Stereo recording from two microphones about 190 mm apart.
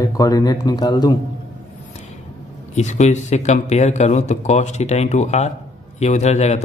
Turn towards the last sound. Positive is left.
turn(degrees=35)  # may be behind; listen again after turning